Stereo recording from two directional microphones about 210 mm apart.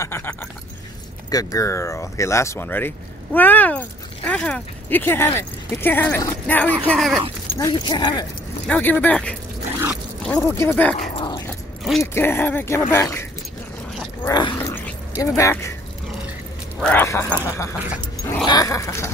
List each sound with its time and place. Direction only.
0.0 s speech: 10° left (ahead or behind)
7.5 s speech: 20° left (ahead or behind)
8.6 s speech: 5° left (ahead or behind)
11.1 s dog: 20° left (ahead or behind)
12.0 s speech: 10° left (ahead or behind)
14.2 s dog: 20° left (ahead or behind)
14.9 s a sound: 15° left (ahead or behind)
16.8 s speech: 10° left (ahead or behind)
17.3 s speech: 10° right (ahead or behind)
18.2 s speech: 15° left (ahead or behind)